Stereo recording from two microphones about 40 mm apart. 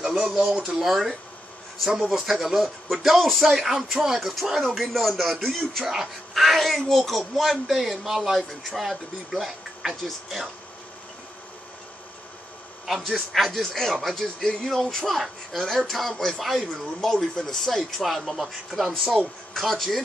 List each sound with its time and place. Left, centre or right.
0.0 s a sound: centre
0.5 s speech: centre
0.8 s speech: centre
5.9 s speech: centre
13.0 s speech: centre
18.7 s speech: left
19.5 s speech: centre